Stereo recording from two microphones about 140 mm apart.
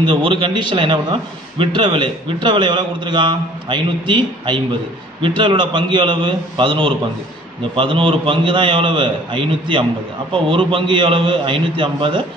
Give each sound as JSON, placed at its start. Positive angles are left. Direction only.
{"t": 0.0, "sound": "a man's voice", "side_deg": -35}